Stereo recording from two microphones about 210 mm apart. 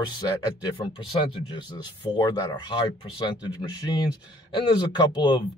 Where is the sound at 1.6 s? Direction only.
20° left (ahead or behind).